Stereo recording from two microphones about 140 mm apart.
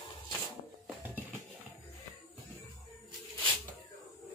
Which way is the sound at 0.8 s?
15° right (ahead or behind).